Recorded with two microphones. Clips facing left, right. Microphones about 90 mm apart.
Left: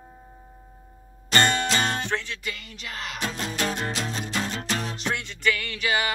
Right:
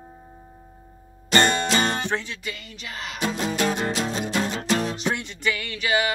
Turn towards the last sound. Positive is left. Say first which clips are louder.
# right 2 dB
turn(degrees=0)  # may be behind; listen again after turning